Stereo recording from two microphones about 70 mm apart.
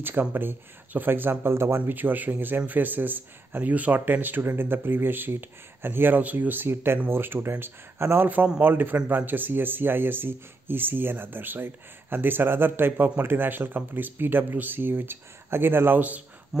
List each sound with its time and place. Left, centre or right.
0.0 s speech: right
1.8 s speech: right